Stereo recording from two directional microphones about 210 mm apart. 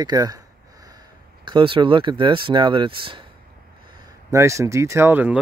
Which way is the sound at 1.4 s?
25° right (ahead or behind).